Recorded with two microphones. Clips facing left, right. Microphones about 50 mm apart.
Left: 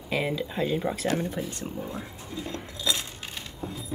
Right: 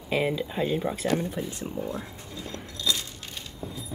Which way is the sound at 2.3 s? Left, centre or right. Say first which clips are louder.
Left 3 dB; centre.